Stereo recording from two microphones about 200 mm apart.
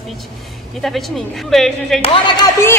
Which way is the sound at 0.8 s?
Centre (ahead or behind).